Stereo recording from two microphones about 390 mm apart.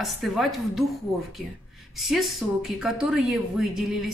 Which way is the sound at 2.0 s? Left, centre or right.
Centre.